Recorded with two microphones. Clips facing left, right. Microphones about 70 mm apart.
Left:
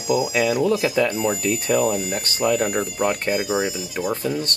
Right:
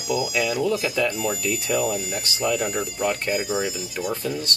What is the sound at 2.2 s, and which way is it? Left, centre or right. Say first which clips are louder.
Speech: left 4 dB; left.